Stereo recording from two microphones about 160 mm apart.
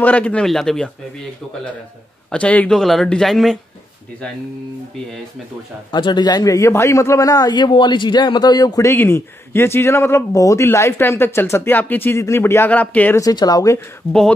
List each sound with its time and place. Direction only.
0.0 s speech: 10° left (ahead or behind)
2.3 s speech: 10° left (ahead or behind)
5.9 s a man's voice: 30° left (ahead or behind); by 13.2 s 10° left (ahead or behind)
13.2 s speech: 25° left (ahead or behind)